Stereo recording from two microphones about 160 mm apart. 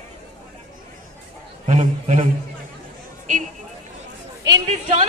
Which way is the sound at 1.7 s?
50° right (ahead or behind).